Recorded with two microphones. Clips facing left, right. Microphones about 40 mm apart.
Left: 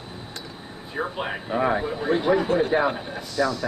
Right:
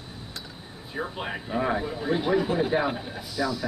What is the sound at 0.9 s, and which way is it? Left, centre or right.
Speech, centre.